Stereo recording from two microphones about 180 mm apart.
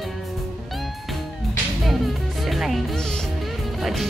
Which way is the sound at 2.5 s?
Centre (ahead or behind).